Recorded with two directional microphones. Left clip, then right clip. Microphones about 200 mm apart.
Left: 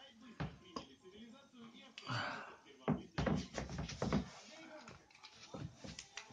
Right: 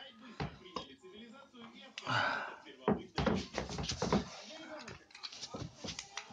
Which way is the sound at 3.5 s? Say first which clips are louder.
Right 6 dB; 15° right (ahead or behind).